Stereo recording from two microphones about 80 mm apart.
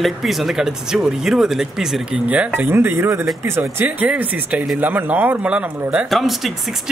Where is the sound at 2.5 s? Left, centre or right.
Right.